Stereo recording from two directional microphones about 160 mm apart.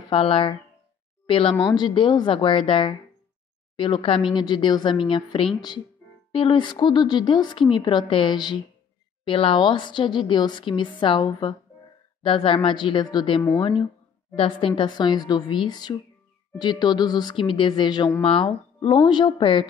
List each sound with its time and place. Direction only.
0.1 s a woman's voice: 35° left (ahead or behind)